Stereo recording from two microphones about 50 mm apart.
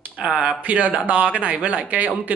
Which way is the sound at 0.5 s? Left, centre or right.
Right.